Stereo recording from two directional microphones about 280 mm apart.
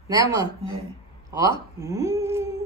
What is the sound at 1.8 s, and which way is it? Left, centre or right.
Speech, centre.